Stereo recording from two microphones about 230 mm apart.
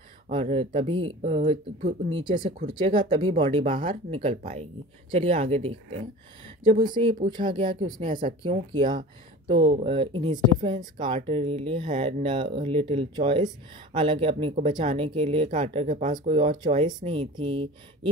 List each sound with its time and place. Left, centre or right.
0.3 s speech: right
8.1 s speech: right
8.4 s speech: right
9.8 s speech: right